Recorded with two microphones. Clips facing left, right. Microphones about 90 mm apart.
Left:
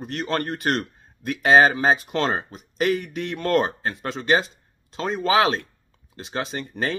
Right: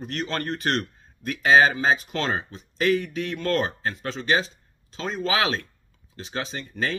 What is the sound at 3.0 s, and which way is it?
Speech, 20° left (ahead or behind).